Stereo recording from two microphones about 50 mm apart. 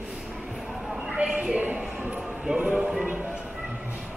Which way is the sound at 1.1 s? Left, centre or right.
Centre.